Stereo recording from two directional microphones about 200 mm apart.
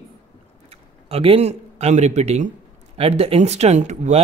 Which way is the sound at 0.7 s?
30° right (ahead or behind).